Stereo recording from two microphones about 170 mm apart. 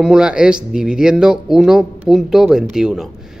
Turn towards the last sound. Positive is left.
turn(degrees=-5)  # may be behind; listen again after turning